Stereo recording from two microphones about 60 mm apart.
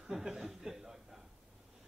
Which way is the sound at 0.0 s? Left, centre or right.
Centre.